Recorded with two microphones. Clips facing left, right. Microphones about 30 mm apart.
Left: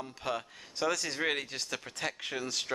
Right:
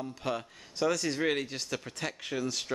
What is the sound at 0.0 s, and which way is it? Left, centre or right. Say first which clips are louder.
Speech: right 2 dB; centre.